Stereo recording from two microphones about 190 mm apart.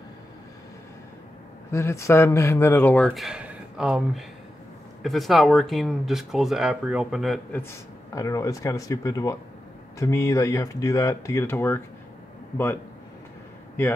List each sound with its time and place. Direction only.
1.7 s speech: 15° left (ahead or behind)
8.1 s speech: 15° left (ahead or behind)